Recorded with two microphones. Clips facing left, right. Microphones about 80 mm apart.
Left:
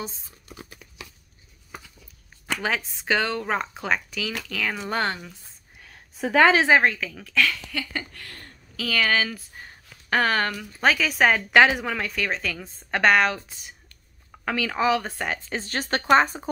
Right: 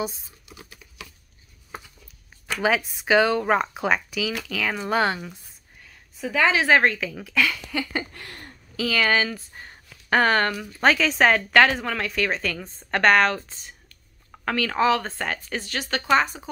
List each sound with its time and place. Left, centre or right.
2.6 s speech: centre
6.2 s speech: left
6.8 s speech: centre; by 8.5 s right
8.7 s a woman's voice: centre; by 15.7 s left
15.7 s a woman's voice: left